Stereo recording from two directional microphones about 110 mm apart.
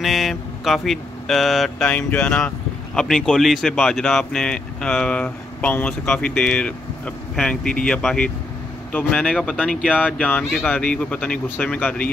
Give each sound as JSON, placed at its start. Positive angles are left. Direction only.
{"t": 0.0, "sound": "speech", "side_deg": 0}
{"t": 1.9, "sound": "speech", "side_deg": 15}